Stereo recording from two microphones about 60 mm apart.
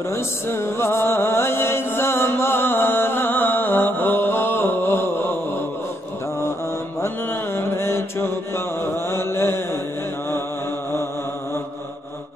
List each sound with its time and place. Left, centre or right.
0.1 s music: left
7.5 s music: left
9.1 s mantra: left